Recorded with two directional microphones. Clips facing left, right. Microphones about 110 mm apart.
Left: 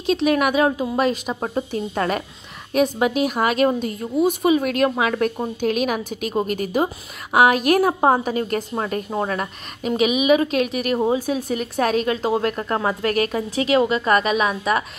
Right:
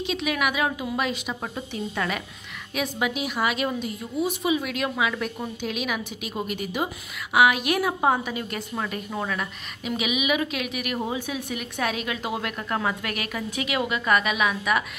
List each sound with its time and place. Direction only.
0.0 s a woman's voice: 40° left (ahead or behind)